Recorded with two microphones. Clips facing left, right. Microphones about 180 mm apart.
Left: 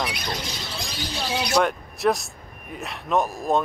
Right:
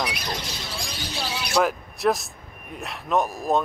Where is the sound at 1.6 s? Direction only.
Centre (ahead or behind).